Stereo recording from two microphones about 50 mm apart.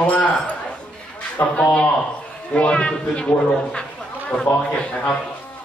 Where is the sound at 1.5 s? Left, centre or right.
Left.